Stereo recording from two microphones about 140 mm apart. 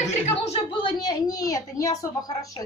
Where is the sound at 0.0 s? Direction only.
50° left (ahead or behind).